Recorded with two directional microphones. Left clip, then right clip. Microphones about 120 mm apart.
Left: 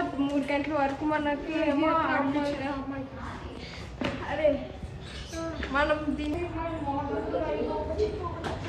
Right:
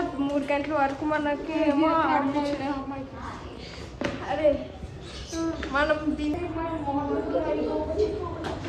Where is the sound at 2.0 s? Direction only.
25° right (ahead or behind).